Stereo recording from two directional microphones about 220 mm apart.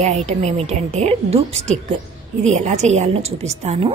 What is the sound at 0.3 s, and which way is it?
A woman's voice, 30° right (ahead or behind).